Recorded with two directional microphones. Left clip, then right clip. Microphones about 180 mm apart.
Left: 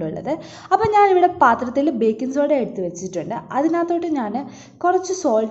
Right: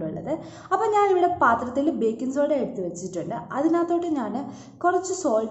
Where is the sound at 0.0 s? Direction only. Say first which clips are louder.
Left 5 dB; 25° left (ahead or behind).